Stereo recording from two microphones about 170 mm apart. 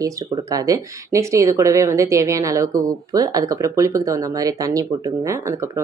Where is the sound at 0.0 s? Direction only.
20° right (ahead or behind).